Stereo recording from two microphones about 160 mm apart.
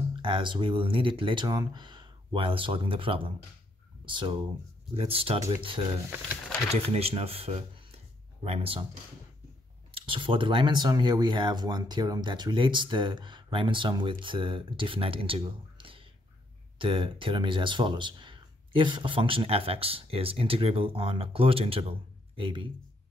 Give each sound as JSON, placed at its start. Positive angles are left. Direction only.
{"t": 0.1, "sound": "speech", "side_deg": -30}
{"t": 9.9, "sound": "speech", "side_deg": -30}